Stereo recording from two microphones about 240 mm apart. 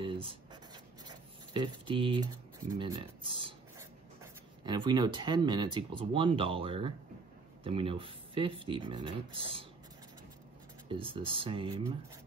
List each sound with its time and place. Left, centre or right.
0.0 s writing: right
1.0 s speech: centre
10.9 s speech: right